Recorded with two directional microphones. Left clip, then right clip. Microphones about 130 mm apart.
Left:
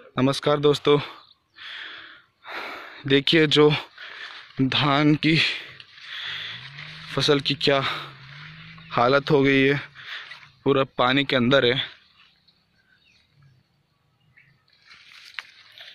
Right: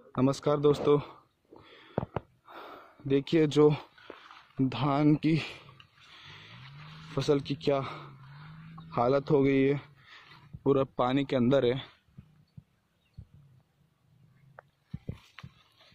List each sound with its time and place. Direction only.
0.1 s a sound: 5° right (ahead or behind)
2.4 s a sound: 25° left (ahead or behind)
3.1 s speech: 5° right (ahead or behind)
6.1 s vehicle: centre (ahead or behind)
7.2 s speech: centre (ahead or behind)
8.9 s speech: 10° right (ahead or behind)